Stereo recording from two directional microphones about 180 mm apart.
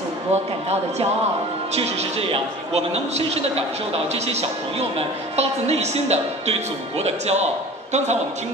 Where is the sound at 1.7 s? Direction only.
35° right (ahead or behind).